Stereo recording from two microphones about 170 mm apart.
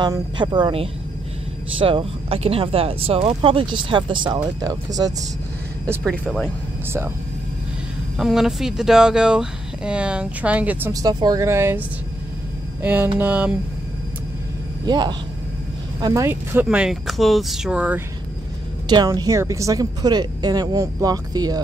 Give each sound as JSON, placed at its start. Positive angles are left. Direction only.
{"t": 0.0, "sound": "speech", "side_deg": -25}
{"t": 6.0, "sound": "speech", "side_deg": 0}
{"t": 8.2, "sound": "speech", "side_deg": 0}
{"t": 10.9, "sound": "speech", "side_deg": -20}
{"t": 12.8, "sound": "speech", "side_deg": -10}
{"t": 14.9, "sound": "speech", "side_deg": -25}
{"t": 16.6, "sound": "speech", "side_deg": -5}
{"t": 18.9, "sound": "speech", "side_deg": -25}